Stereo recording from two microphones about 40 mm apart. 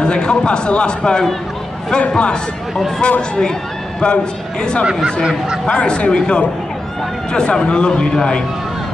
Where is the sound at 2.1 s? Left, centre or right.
Left.